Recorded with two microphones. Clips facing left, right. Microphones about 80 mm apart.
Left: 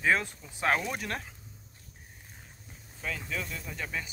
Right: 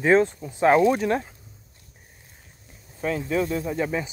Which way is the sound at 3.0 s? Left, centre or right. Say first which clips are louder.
Right 12 dB; right.